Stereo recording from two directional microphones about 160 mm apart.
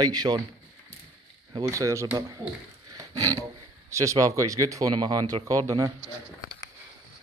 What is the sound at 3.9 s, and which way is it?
Speech, 20° right (ahead or behind).